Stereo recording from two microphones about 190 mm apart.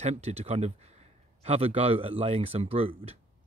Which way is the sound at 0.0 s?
35° right (ahead or behind).